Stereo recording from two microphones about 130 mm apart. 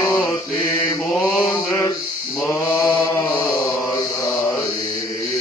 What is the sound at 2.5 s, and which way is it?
Mantra, 15° left (ahead or behind).